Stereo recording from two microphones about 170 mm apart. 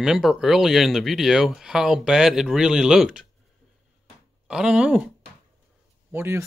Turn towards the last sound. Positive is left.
turn(degrees=-15)  # may be behind; listen again after turning